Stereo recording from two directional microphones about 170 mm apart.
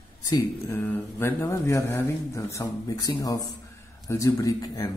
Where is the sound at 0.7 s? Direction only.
10° left (ahead or behind).